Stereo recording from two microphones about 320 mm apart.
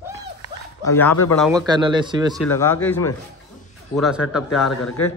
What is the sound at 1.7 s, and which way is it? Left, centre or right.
Speech, centre.